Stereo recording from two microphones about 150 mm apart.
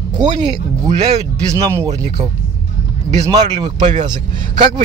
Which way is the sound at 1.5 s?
20° right (ahead or behind).